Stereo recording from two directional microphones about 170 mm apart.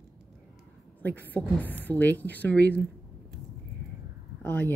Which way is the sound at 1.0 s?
10° left (ahead or behind).